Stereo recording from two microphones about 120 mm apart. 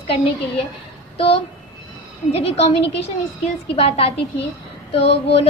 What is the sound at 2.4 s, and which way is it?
Speech, 55° left (ahead or behind).